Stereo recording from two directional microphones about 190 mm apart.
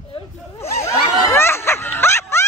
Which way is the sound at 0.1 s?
35° left (ahead or behind).